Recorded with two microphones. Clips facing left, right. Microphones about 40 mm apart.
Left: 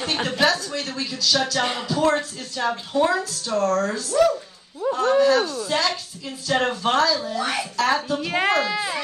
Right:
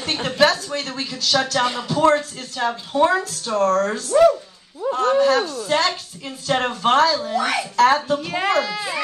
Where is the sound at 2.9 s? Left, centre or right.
Right.